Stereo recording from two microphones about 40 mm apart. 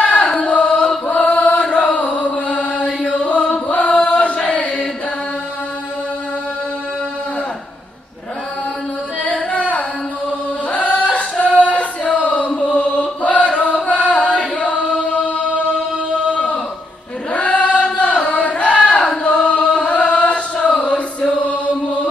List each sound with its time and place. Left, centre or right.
0.0 s a sound: left
0.4 s chant: left
1.0 s chant: left
9.2 s carnatic music: left
9.6 s music: left
10.7 s a sound: left
12.4 s chant: left
17.3 s chant: left